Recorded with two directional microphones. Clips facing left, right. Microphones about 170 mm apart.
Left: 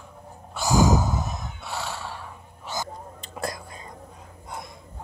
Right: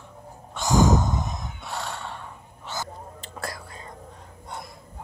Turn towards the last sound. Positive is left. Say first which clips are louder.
# left 3 dB
turn(degrees=20)  # may be behind; listen again after turning